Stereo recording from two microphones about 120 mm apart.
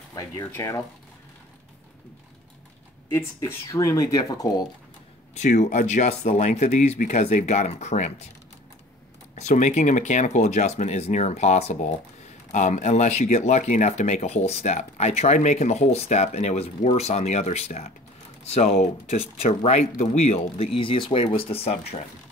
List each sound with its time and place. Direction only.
0.1 s speech: 30° left (ahead or behind)
3.3 s speech: 25° left (ahead or behind)
5.3 s speech: 85° left
9.3 s speech: 80° left
12.5 s speech: 85° left; by 22.0 s 55° left (ahead or behind)